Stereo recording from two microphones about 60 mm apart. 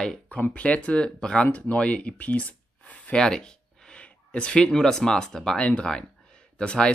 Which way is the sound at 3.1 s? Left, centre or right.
Centre.